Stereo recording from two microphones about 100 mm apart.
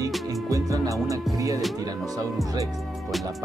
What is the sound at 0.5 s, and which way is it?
Music, 35° right (ahead or behind).